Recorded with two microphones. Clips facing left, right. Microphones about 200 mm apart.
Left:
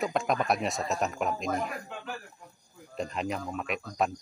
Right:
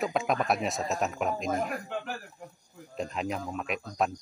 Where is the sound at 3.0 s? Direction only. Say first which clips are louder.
Even; centre (ahead or behind).